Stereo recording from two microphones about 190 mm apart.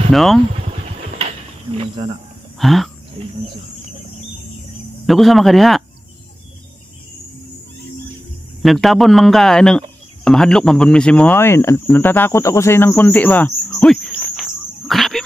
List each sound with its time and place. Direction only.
0.1 s speech: centre (ahead or behind)
1.7 s speech: 30° right (ahead or behind)
2.6 s speech: centre (ahead or behind)
3.2 s wild animals: 30° right (ahead or behind)
5.0 s speech: centre (ahead or behind)
8.6 s speech: centre (ahead or behind)